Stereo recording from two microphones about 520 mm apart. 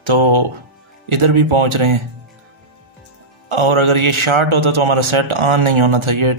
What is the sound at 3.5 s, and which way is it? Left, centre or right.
A man's voice, right.